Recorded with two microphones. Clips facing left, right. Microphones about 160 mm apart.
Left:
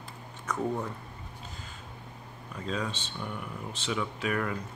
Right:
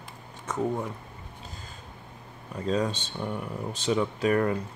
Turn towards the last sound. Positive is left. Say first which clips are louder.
# right 7 dB
turn(degrees=-35)  # may be behind; listen again after turning